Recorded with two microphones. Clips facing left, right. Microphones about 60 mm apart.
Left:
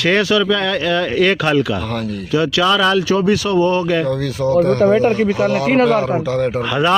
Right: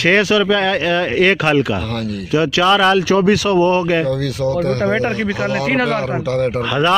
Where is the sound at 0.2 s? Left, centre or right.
Right.